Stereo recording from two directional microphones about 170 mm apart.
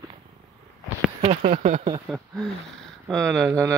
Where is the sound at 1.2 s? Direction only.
40° right (ahead or behind).